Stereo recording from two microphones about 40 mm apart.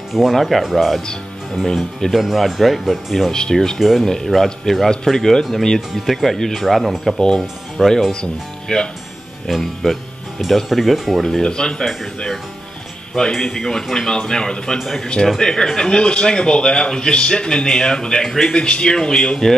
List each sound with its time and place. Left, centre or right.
0.1 s speech: centre
2.1 s speech: centre
3.3 s speech: centre
6.6 s speech: centre
9.5 s speech: centre
11.2 s speech: centre
11.8 s speech: centre
13.1 s speech: centre
18.5 s speech: left